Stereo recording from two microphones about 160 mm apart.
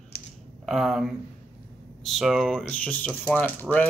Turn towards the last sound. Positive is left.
turn(degrees=10)  # may be behind; listen again after turning